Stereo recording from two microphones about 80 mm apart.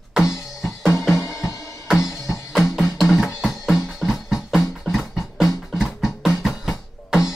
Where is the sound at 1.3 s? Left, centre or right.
Centre.